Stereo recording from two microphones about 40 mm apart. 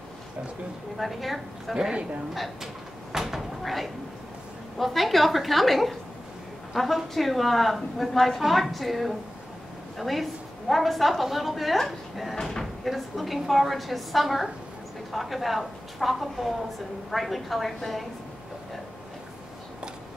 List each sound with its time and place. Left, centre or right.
0.9 s a woman's voice: centre
3.1 s cupboard open or close: centre
4.7 s a woman's voice: centre
12.8 s a woman's voice: centre